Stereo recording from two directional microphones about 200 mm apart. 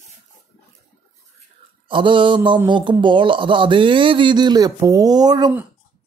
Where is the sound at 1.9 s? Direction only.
25° right (ahead or behind).